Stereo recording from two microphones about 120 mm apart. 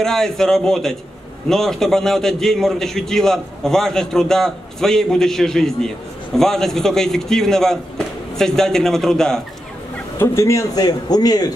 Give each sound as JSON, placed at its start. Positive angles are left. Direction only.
{"t": 0.0, "sound": "a man's voice", "side_deg": 5}
{"t": 10.1, "sound": "a man's voice", "side_deg": 20}